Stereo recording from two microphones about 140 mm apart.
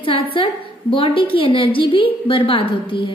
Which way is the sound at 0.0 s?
40° left (ahead or behind).